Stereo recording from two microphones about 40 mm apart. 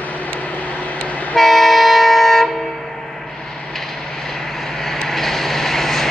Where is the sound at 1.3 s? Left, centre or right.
Centre.